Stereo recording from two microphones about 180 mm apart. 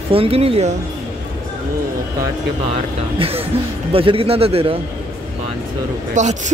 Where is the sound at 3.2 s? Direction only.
30° right (ahead or behind).